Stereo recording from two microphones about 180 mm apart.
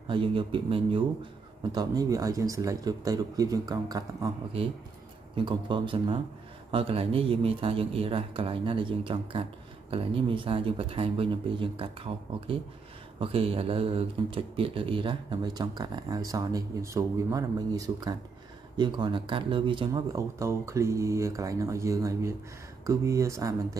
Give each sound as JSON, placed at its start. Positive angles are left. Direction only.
{"t": 0.1, "sound": "speech", "side_deg": -30}
{"t": 5.3, "sound": "speech", "side_deg": -25}